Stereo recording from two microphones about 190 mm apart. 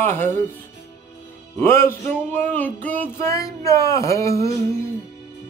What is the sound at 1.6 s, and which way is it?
Speech, 10° left (ahead or behind).